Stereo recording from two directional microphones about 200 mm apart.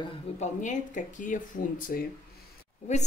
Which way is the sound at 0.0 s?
35° left (ahead or behind).